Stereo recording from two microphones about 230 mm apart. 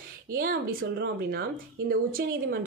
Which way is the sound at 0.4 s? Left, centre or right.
Right.